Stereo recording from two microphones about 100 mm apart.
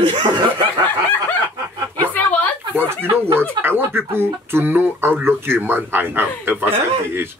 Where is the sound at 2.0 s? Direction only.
15° left (ahead or behind).